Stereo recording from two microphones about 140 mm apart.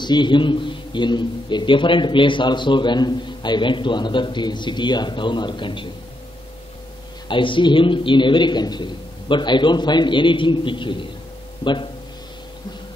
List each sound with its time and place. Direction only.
0.0 s a man's voice: 35° left (ahead or behind)
7.2 s a man's voice: 35° left (ahead or behind)